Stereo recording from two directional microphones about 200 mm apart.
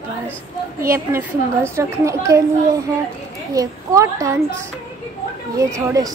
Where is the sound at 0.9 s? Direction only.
15° right (ahead or behind).